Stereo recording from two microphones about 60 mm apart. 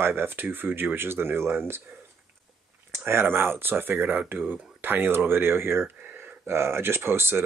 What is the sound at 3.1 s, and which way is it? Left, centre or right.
Speech, right.